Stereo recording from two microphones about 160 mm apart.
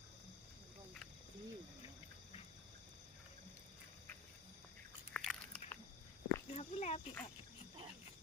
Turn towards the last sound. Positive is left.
turn(degrees=45)  # may be behind; listen again after turning